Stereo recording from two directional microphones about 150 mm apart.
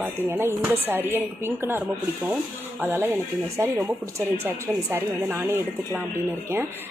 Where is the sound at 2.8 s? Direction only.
15° right (ahead or behind).